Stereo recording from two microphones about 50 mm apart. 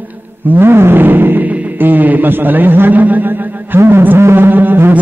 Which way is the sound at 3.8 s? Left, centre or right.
Right.